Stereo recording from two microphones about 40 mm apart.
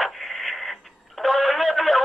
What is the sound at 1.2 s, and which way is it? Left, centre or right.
Radio, centre.